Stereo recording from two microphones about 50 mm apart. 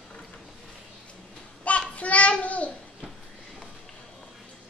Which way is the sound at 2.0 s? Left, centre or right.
Left.